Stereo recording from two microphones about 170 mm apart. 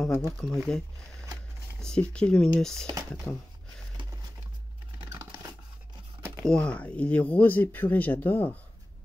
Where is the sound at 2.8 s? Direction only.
20° right (ahead or behind).